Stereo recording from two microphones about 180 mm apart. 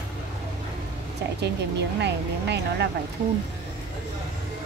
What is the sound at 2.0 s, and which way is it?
Speech, 70° right (ahead or behind).